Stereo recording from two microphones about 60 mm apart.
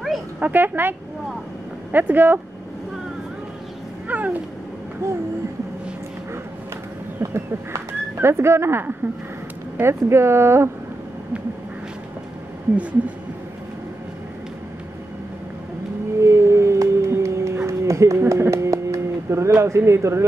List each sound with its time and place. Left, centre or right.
0.4 s speech: right
4.1 s cat: right
5.0 s speech: right
8.2 s speech: right
16.2 s singing bowl: right
17.6 s a sound: right